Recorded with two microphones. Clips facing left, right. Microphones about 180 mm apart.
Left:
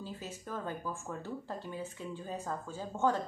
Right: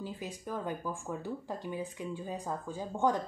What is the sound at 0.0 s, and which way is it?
Speech, 15° right (ahead or behind).